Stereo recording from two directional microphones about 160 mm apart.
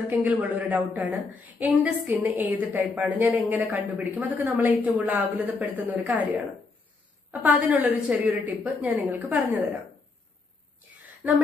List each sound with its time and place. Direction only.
0.1 s a woman's voice: 10° right (ahead or behind)
11.2 s a woman's voice: 10° right (ahead or behind)